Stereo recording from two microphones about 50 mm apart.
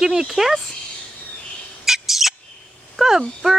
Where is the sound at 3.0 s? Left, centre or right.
Centre.